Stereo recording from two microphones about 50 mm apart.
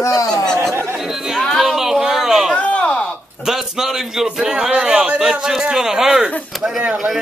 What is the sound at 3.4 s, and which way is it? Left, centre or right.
A man's voice, centre.